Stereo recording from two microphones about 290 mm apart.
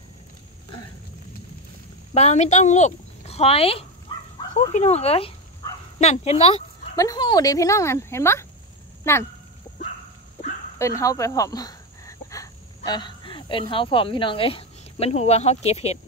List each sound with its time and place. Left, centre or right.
2.1 s speech: left
10.8 s speech: centre